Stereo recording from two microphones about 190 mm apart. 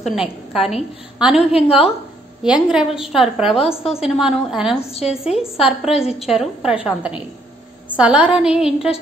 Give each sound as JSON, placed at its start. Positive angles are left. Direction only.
{"t": 0.0, "sound": "a woman's voice", "side_deg": 0}
{"t": 1.3, "sound": "a woman's voice", "side_deg": 30}
{"t": 2.4, "sound": "a woman's voice", "side_deg": -5}
{"t": 4.9, "sound": "a woman's voice", "side_deg": 30}
{"t": 5.2, "sound": "a woman's voice", "side_deg": -5}